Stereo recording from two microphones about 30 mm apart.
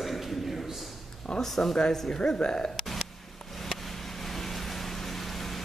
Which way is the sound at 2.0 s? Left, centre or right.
Left.